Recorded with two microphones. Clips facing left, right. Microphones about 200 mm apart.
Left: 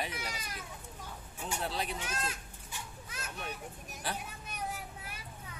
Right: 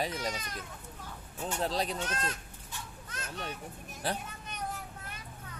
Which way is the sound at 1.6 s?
40° right (ahead or behind).